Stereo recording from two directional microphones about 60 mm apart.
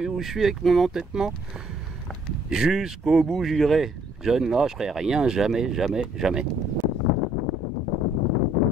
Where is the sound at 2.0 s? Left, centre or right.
Centre.